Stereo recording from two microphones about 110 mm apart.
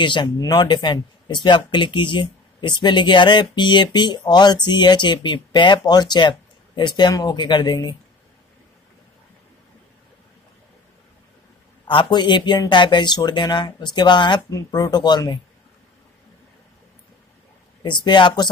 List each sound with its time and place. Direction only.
0.0 s speech: 45° left (ahead or behind)
11.9 s speech: 45° left (ahead or behind)
14.5 s speech: 30° left (ahead or behind)
17.8 s speech: 45° left (ahead or behind)